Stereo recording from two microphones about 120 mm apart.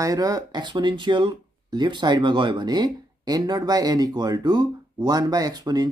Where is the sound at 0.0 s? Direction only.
30° right (ahead or behind).